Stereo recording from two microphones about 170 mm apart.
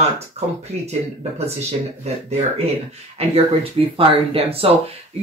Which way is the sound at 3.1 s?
35° right (ahead or behind).